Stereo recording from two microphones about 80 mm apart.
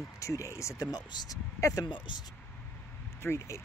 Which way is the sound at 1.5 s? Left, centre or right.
Left.